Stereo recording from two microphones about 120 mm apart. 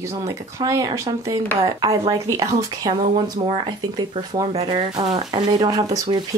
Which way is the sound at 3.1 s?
40° right (ahead or behind).